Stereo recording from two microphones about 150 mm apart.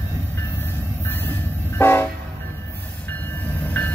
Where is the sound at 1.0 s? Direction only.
15° left (ahead or behind).